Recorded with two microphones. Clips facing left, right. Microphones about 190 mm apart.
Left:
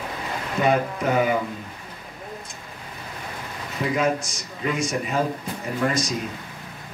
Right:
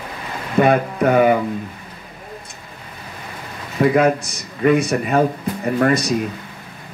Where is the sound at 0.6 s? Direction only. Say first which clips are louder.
Right 6 dB; 60° right (ahead or behind).